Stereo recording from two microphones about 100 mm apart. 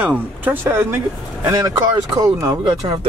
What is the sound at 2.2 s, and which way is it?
Speech, 35° right (ahead or behind).